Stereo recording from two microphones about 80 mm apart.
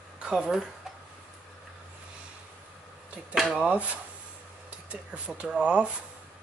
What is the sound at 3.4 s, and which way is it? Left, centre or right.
Speech, centre.